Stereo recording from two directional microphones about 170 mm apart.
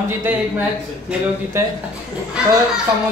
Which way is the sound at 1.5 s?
15° right (ahead or behind).